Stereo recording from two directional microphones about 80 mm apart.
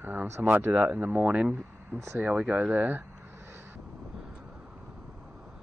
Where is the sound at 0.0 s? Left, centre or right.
Right.